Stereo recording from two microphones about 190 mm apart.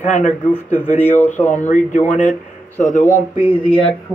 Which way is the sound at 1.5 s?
40° left (ahead or behind).